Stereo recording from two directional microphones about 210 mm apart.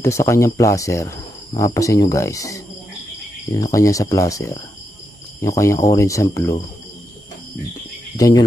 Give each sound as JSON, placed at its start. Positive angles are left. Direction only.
{"t": 0.0, "sound": "speech", "side_deg": 15}
{"t": 8.2, "sound": "speech", "side_deg": 15}